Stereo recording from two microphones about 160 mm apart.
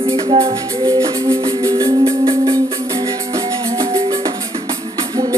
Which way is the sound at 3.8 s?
35° right (ahead or behind).